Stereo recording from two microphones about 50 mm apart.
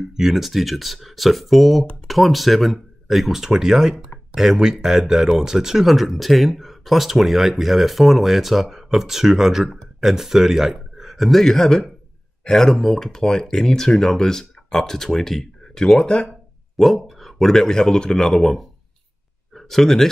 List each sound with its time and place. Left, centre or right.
0.1 s speech: centre
16.7 s speech: centre